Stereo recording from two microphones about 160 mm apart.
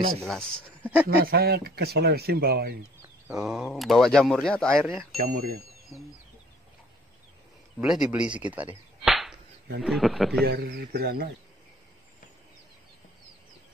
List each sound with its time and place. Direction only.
0.2 s speech: 5° left (ahead or behind)
1.0 s speech: 75° right (ahead or behind)
3.4 s speech: centre (ahead or behind)
5.1 s speech: 65° right (ahead or behind)
7.8 s speech: 5° right (ahead or behind)
10.4 s speech: 80° right